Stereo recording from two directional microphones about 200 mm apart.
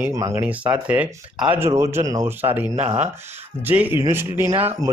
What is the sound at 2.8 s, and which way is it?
Speech, 35° right (ahead or behind).